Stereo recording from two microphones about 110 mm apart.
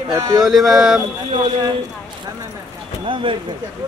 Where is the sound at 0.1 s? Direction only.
30° right (ahead or behind).